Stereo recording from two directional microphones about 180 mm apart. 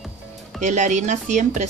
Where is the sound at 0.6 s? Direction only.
40° right (ahead or behind).